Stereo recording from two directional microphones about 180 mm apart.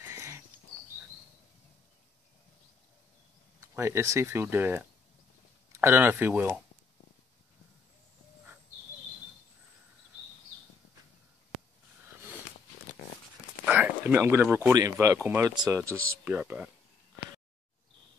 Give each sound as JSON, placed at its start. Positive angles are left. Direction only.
{"t": 0.0, "sound": "a sound", "side_deg": -15}
{"t": 3.7, "sound": "speech", "side_deg": -15}
{"t": 13.7, "sound": "speech", "side_deg": -10}